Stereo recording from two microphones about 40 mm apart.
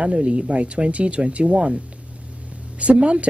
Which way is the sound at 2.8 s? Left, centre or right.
Right.